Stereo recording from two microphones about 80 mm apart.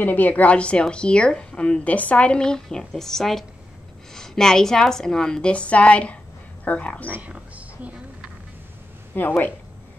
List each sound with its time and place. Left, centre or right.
0.0 s a woman's voice: left
7.1 s a sound: centre
9.1 s speech: left